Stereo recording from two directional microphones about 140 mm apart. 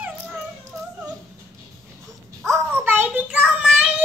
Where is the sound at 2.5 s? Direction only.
15° right (ahead or behind).